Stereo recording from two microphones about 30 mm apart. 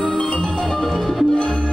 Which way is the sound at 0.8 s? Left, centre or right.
Centre.